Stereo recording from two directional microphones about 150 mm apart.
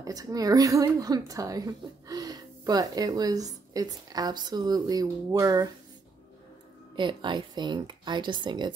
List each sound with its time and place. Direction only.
0.0 s a woman's voice: 25° right (ahead or behind)
7.0 s speech: 30° right (ahead or behind)